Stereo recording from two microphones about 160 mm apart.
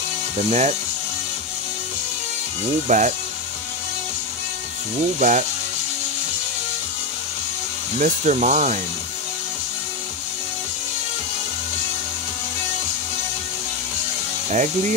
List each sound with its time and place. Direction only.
0.4 s speech: 45° right (ahead or behind)
2.9 s speech: 50° right (ahead or behind)
5.2 s speech: 45° right (ahead or behind)
8.0 s speech: 50° right (ahead or behind)
14.5 s speech: 50° right (ahead or behind)